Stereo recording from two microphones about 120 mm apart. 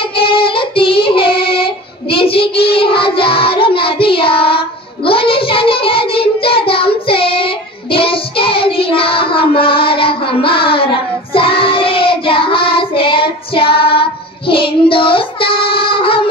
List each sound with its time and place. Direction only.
0.0 s child singing: 45° left (ahead or behind)